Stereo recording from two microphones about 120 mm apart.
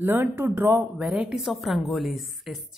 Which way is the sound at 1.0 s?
5° right (ahead or behind).